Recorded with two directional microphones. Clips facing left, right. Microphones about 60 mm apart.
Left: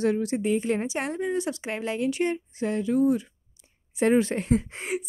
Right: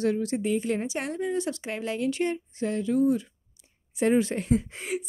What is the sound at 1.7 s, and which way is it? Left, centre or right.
Speech, left.